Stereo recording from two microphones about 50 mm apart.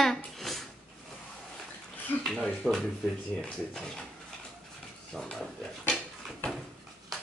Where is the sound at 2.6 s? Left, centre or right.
Centre.